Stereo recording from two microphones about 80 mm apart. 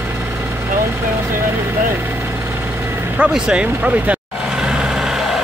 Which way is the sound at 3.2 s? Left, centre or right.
Centre.